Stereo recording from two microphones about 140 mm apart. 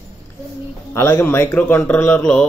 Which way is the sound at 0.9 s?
20° left (ahead or behind).